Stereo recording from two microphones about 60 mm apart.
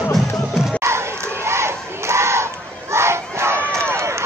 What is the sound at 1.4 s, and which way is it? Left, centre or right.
Battle cry, right.